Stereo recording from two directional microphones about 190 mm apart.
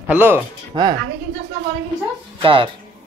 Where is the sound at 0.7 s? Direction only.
20° right (ahead or behind).